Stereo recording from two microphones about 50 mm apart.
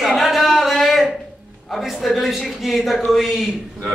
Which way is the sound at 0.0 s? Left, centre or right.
Centre.